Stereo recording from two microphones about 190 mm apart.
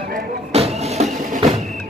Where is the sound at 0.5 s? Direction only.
35° right (ahead or behind).